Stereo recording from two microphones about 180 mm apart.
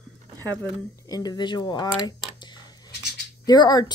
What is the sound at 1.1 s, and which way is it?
Speech, 20° left (ahead or behind).